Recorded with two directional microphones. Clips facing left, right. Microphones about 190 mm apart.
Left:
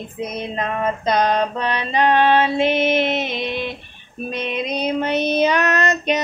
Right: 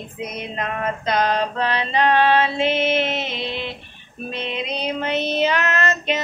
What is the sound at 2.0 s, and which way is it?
Child singing, 15° left (ahead or behind).